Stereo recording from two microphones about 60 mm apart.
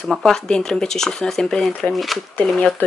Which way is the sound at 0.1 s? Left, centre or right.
Centre.